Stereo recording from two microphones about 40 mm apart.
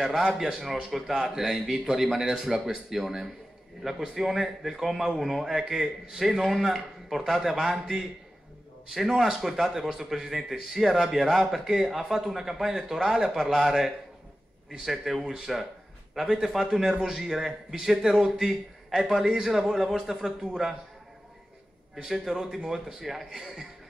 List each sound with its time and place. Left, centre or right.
0.0 s a man's voice: centre
8.9 s a man's voice: centre
15.2 s a man's voice: centre
21.9 s a man's voice: centre